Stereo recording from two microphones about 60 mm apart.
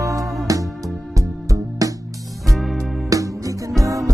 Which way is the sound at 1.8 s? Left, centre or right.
Right.